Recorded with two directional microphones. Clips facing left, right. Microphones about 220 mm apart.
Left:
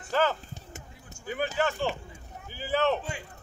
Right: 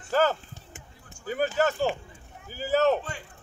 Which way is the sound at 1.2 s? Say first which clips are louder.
Right 4 dB; 40° right (ahead or behind).